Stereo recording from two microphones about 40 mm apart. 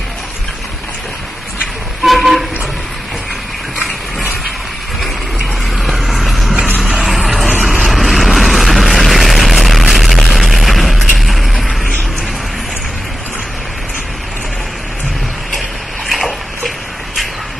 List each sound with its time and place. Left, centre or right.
2.0 s vehicle: centre
5.8 s vehicle: centre
16.1 s a sound: centre